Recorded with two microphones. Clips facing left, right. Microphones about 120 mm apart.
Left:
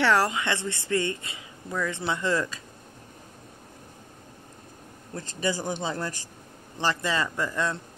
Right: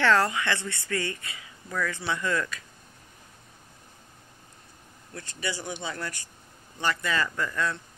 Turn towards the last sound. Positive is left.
turn(degrees=25)  # may be behind; listen again after turning